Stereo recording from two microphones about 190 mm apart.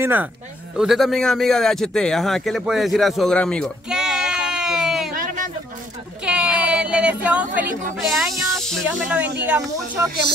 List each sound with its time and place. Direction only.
0.0 s a man's voice: 10° right (ahead or behind)
5.1 s a sound: 45° right (ahead or behind)
6.2 s speech: 5° right (ahead or behind)